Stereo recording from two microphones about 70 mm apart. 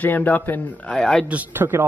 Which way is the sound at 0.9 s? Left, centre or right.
Centre.